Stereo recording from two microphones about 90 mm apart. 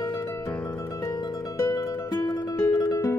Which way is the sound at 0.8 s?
35° left (ahead or behind).